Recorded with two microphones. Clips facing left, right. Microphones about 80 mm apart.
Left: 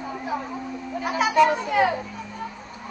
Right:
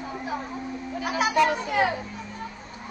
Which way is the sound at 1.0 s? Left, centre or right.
Left.